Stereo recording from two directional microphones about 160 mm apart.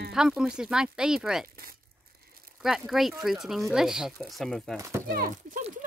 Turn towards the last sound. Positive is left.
turn(degrees=-60)  # may be behind; listen again after turning